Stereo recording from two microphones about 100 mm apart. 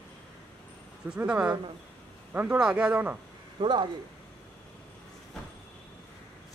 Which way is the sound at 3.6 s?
50° right (ahead or behind).